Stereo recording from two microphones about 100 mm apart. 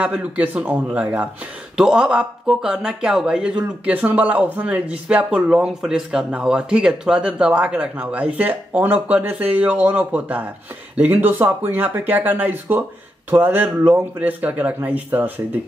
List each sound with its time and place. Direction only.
0.0 s speech: 10° right (ahead or behind)